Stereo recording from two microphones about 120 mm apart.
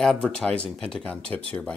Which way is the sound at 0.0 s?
5° left (ahead or behind).